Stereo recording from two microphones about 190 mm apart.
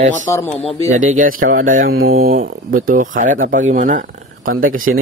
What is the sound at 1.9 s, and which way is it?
Speech, 90° right.